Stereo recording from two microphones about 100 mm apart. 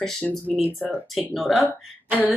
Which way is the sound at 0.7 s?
20° left (ahead or behind).